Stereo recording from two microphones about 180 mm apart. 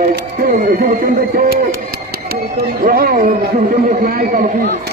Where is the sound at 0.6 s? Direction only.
45° right (ahead or behind).